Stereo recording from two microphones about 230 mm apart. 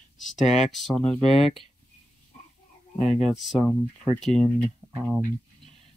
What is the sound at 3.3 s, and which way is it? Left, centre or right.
Speech, centre.